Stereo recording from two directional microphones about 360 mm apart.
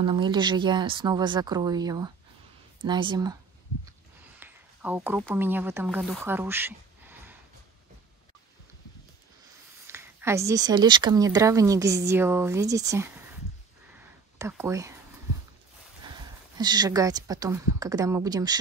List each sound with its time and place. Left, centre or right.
0.0 s speech: centre
4.4 s a sound: centre
5.2 s speech: centre
9.8 s speech: centre
14.4 s speech: centre
16.5 s speech: centre